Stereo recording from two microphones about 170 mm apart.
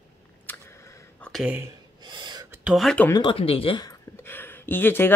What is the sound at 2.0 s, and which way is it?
Gasp, 25° right (ahead or behind).